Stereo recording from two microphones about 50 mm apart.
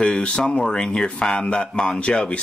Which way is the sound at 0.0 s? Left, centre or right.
Centre.